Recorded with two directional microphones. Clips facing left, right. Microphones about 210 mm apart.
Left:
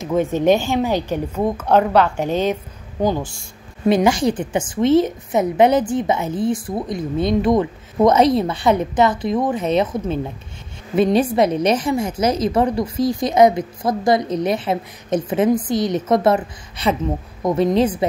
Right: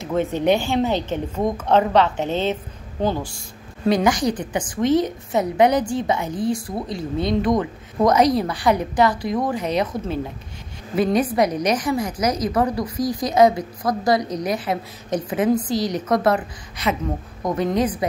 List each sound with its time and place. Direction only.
0.0 s a woman's voice: 15° left (ahead or behind)
3.8 s a woman's voice: 25° left (ahead or behind)